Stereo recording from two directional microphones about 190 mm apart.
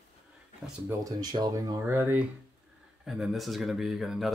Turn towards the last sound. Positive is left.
turn(degrees=0)  # may be behind; listen again after turning